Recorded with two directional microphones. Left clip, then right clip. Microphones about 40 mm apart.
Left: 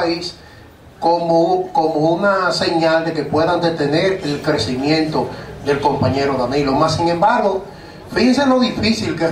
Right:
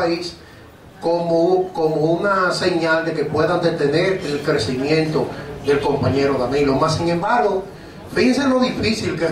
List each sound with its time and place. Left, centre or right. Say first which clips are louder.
0.0 s speech: left 1 dB; left